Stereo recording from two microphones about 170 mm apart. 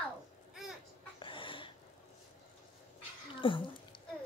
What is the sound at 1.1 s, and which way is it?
Dog, 30° left (ahead or behind).